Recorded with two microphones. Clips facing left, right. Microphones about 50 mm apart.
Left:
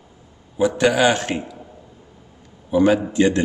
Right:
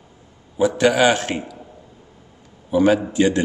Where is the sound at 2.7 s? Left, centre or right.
Right.